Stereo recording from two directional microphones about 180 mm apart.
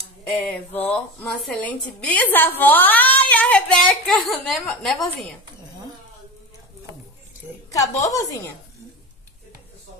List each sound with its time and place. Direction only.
0.2 s a woman's voice: 10° left (ahead or behind)
7.7 s a woman's voice: 20° left (ahead or behind)